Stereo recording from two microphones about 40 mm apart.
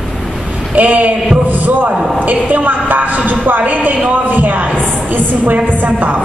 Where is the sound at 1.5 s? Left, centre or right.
Right.